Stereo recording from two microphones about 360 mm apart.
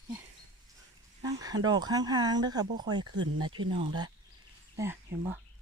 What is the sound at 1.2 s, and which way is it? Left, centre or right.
Speech, centre.